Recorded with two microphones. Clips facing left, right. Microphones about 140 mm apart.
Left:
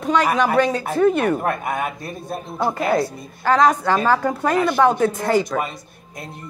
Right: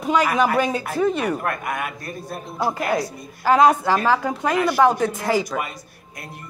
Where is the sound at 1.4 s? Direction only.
25° left (ahead or behind).